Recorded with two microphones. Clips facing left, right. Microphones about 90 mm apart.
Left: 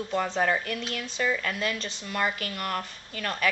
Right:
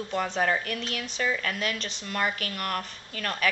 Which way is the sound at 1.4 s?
15° left (ahead or behind).